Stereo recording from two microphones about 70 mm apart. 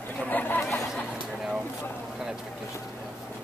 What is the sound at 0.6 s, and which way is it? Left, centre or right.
Speech, left.